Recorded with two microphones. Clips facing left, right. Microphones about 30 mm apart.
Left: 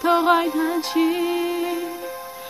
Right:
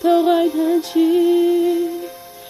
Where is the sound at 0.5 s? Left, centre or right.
Centre.